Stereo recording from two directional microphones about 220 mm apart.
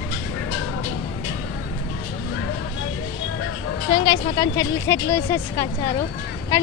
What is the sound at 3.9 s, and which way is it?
Speech, 20° left (ahead or behind).